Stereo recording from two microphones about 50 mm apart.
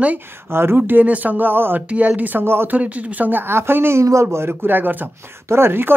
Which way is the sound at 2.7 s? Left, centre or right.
Right.